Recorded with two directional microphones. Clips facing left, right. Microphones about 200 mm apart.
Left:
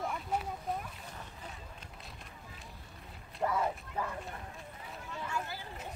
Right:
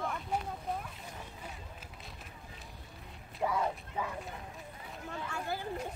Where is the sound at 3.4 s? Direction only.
Centre (ahead or behind).